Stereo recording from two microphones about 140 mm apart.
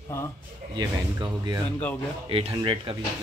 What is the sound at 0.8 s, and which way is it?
Speech, 30° right (ahead or behind).